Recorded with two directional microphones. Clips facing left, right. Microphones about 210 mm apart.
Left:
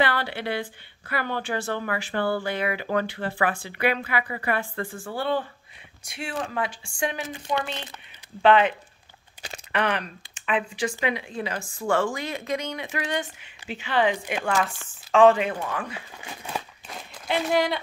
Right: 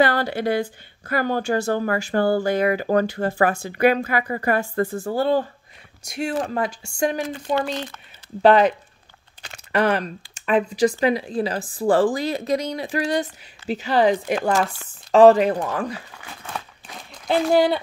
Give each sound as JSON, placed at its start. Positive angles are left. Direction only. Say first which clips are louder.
{"t": 0.0, "sound": "a woman's voice", "louder": "right 6 dB", "side_deg": -40}
{"t": 17.3, "sound": "speech", "louder": "right 6 dB", "side_deg": -30}